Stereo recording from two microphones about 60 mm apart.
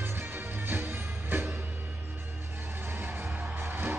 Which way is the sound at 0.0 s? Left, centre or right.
Right.